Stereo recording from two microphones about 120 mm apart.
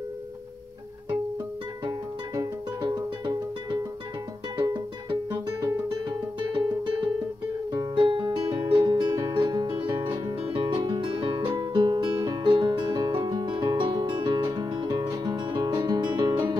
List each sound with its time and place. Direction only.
1.9 s music: 30° right (ahead or behind)
7.7 s music: 40° right (ahead or behind)